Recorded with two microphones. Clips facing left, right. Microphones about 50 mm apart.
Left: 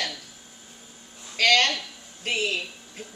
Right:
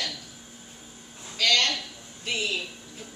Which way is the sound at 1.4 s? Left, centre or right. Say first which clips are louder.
Left 4 dB; left.